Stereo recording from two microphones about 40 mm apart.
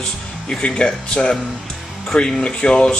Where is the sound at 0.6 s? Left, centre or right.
Left.